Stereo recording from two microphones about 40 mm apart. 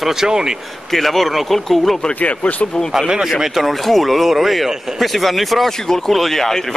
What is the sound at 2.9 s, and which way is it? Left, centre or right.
Speech, centre.